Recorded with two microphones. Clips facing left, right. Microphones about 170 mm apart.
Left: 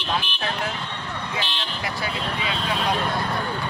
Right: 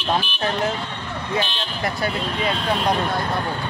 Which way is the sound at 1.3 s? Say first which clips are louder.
Right 8 dB; 45° right (ahead or behind).